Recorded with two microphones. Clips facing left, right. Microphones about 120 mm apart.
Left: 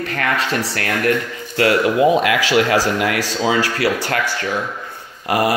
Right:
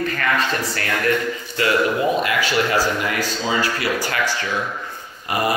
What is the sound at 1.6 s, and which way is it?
A man's voice, 85° left.